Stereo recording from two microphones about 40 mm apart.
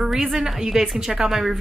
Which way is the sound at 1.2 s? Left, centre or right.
Centre.